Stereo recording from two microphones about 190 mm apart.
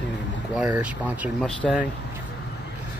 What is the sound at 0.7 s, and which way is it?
Speech, 10° right (ahead or behind).